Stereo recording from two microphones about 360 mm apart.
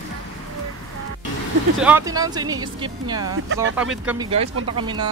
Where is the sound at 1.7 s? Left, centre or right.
Centre.